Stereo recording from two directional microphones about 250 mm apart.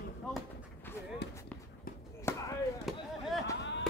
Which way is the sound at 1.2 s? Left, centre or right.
Left.